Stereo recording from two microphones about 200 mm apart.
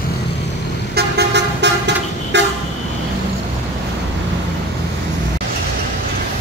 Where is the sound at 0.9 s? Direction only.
55° right (ahead or behind).